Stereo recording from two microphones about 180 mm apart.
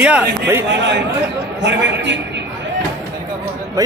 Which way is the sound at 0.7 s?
75° right (ahead or behind).